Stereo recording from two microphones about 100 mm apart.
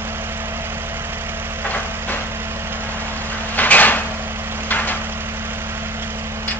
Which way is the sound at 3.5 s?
15° left (ahead or behind).